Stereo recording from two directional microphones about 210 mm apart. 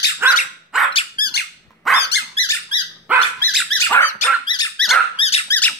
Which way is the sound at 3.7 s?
15° left (ahead or behind).